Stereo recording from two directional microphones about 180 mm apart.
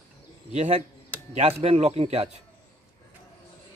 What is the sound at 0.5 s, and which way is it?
A man's voice, 35° right (ahead or behind).